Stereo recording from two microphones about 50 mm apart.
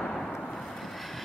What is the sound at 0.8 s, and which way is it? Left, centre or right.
Vehicle, centre.